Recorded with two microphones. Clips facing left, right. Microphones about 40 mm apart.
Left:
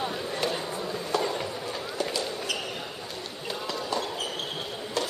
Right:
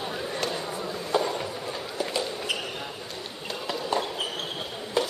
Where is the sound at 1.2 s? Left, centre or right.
Centre.